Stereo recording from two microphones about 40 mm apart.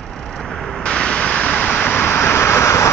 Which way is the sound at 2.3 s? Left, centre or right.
Left.